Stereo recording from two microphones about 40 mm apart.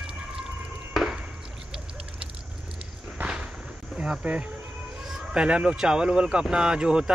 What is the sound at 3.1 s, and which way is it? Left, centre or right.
Walk, right.